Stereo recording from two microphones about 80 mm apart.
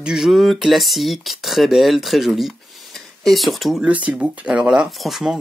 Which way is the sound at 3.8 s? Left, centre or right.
Centre.